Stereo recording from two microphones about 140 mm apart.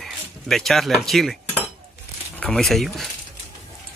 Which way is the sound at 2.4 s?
Centre (ahead or behind).